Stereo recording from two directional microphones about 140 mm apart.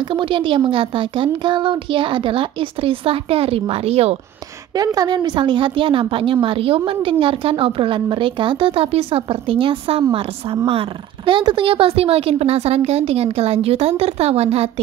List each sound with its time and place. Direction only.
0.0 s speech: 35° right (ahead or behind)
4.7 s speech: 25° right (ahead or behind); by 14.7 s 45° right (ahead or behind)